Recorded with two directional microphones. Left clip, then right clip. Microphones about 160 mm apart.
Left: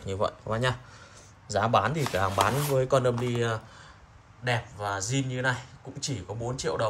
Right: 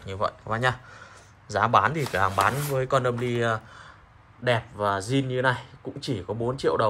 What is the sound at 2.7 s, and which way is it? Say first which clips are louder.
Speech: even; 20° left (ahead or behind).